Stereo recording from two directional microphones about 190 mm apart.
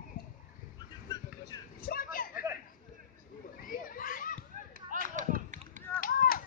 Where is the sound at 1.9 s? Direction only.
50° left (ahead or behind).